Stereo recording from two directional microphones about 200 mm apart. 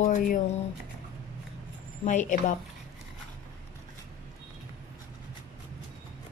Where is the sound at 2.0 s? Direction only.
40° left (ahead or behind).